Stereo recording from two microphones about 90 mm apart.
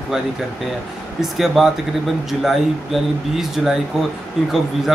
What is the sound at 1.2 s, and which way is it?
Speech, 5° right (ahead or behind).